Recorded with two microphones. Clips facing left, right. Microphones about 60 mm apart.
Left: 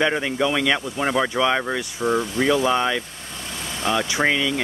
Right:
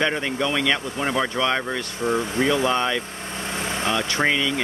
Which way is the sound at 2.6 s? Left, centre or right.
Centre.